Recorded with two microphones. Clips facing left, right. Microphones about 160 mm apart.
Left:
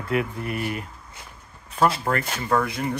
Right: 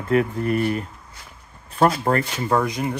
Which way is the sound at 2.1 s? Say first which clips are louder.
Right 4 dB; 35° right (ahead or behind).